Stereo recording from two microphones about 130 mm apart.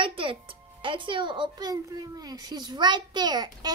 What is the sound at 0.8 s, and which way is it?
A child's voice, 40° right (ahead or behind).